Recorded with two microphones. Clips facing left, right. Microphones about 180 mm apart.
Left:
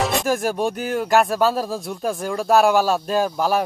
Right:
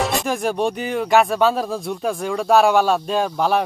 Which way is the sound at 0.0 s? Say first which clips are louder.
Even; centre (ahead or behind).